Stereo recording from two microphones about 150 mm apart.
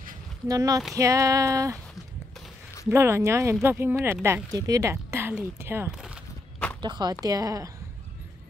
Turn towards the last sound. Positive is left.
turn(degrees=-25)  # may be behind; listen again after turning